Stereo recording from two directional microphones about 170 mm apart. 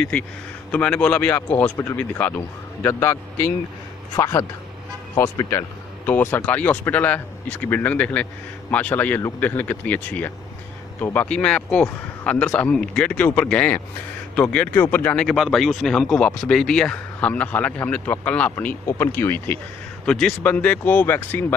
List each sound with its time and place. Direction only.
0.7 s speech: 5° left (ahead or behind)